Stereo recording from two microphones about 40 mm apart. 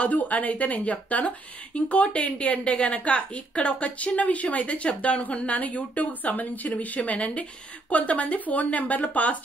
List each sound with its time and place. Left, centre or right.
0.1 s a woman's voice: left